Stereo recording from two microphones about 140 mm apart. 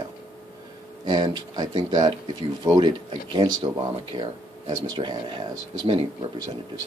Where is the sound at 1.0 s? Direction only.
30° right (ahead or behind).